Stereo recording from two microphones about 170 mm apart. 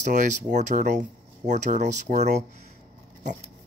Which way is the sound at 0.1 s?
45° right (ahead or behind).